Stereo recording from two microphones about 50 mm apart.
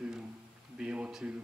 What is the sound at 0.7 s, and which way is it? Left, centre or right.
Speech, right.